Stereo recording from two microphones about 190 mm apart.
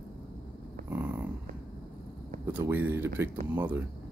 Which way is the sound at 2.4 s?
10° right (ahead or behind).